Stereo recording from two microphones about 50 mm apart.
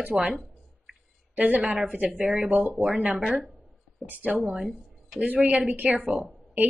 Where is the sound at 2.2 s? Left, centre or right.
Centre.